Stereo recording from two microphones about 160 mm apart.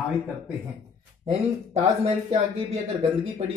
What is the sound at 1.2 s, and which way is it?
Speech, 40° right (ahead or behind).